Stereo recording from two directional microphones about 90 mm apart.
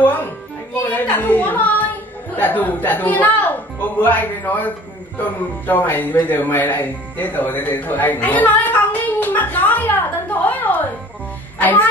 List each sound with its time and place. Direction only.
0.8 s a woman's voice: 20° left (ahead or behind)